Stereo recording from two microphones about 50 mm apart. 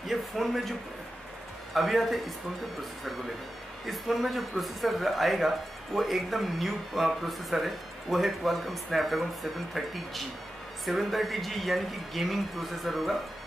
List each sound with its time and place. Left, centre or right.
0.0 s speech: centre
3.8 s speech: centre